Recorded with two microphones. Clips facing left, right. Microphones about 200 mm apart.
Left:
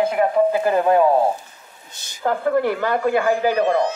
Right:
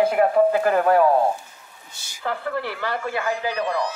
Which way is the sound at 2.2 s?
45° left (ahead or behind).